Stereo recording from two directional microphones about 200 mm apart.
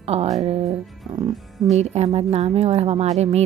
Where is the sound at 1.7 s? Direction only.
35° right (ahead or behind).